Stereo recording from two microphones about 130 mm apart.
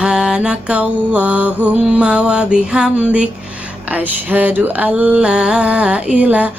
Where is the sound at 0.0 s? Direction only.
5° right (ahead or behind).